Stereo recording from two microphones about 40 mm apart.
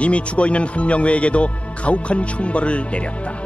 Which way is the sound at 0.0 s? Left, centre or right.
Left.